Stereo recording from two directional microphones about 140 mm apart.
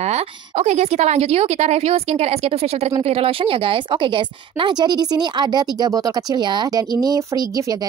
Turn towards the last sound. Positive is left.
turn(degrees=-25)  # may be behind; listen again after turning